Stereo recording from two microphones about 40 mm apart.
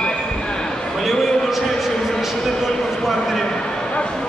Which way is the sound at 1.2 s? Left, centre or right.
Centre.